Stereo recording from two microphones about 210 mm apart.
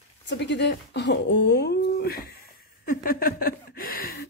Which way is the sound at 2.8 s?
40° left (ahead or behind).